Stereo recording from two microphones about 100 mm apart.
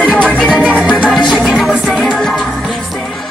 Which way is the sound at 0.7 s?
15° right (ahead or behind).